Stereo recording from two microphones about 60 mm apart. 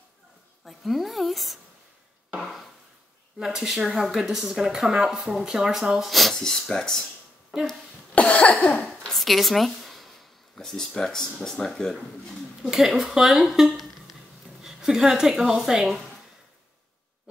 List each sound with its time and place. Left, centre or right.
0.7 s a woman's voice: centre
3.3 s speech: centre
7.5 s speech: centre
8.1 s cough: left
9.0 s a sound: centre
11.4 s speech: centre
12.7 s speech: centre